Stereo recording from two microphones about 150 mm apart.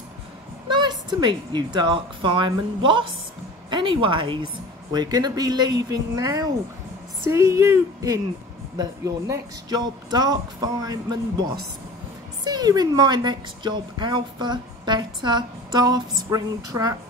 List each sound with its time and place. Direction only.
0.7 s a woman's voice: 30° right (ahead or behind)
12.4 s speech: 25° right (ahead or behind)